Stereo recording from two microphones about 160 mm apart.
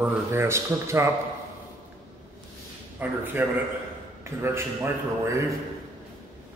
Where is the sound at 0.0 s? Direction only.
15° right (ahead or behind).